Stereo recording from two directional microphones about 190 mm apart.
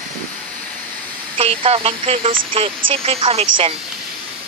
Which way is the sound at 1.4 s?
30° right (ahead or behind).